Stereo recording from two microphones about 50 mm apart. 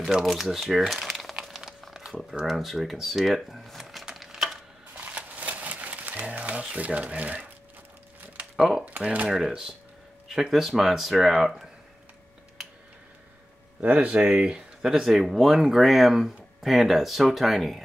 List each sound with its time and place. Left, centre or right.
0.2 s speech: centre
1.8 s crumpling: centre
2.4 s speech: centre
4.0 s a sound: centre
5.0 s a sound: right
8.5 s speech: centre
8.8 s speech: right
10.2 s speech: centre
13.7 s speech: right; by 17.8 s centre